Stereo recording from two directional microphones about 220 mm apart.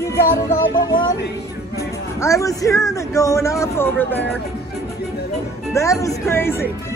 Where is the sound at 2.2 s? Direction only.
15° left (ahead or behind).